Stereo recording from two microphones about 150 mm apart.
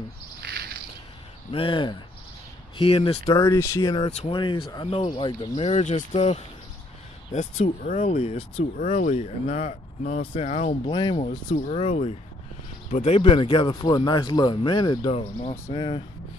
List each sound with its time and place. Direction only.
0.4 s bird: 90° right
1.5 s speech: 35° left (ahead or behind)
3.3 s speech: 20° left (ahead or behind)
3.9 s speech: 45° left (ahead or behind)
4.4 s speech: 30° left (ahead or behind)
5.5 s speech: 50° left (ahead or behind)
8.7 s speech: 55° left (ahead or behind); by 11.3 s 35° left (ahead or behind)
11.5 s speech: 45° left (ahead or behind)
15.7 s speech: 30° left (ahead or behind)